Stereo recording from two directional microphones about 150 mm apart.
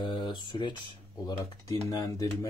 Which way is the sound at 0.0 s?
30° left (ahead or behind).